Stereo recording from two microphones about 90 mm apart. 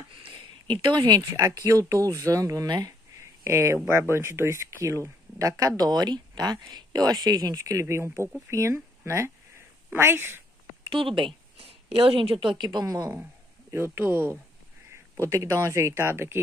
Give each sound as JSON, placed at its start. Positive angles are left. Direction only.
{"t": 0.2, "sound": "a sound", "side_deg": -70}
{"t": 1.3, "sound": "speech", "side_deg": -35}
{"t": 3.4, "sound": "speech", "side_deg": -30}
{"t": 7.8, "sound": "speech", "side_deg": -30}
{"t": 10.9, "sound": "a woman's voice", "side_deg": -70}
{"t": 12.8, "sound": "speech", "side_deg": -40}
{"t": 13.7, "sound": "speech", "side_deg": -25}